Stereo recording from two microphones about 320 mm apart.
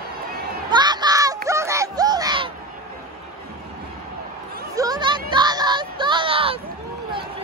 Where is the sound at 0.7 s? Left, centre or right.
Centre.